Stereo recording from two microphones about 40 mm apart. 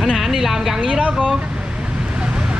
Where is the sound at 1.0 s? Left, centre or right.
Right.